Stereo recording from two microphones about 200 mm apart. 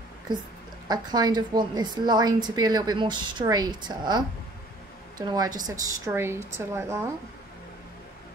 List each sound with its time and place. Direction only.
0.8 s a woman's voice: 20° right (ahead or behind)
5.2 s a woman's voice: 20° right (ahead or behind)